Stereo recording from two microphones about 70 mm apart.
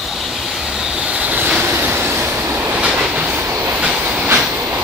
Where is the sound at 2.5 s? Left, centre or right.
Right.